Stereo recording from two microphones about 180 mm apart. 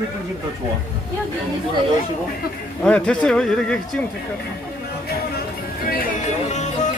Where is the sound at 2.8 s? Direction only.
5° left (ahead or behind).